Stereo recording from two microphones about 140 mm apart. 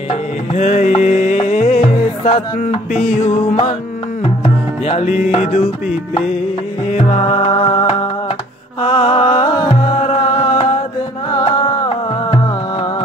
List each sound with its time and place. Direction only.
0.1 s music: 55° left (ahead or behind)
4.8 s music: 50° left (ahead or behind)
6.9 s music: 50° left (ahead or behind)
11.3 s music: 35° left (ahead or behind)